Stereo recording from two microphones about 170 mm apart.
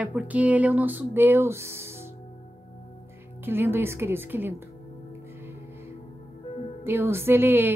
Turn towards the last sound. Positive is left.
turn(degrees=-15)  # may be behind; listen again after turning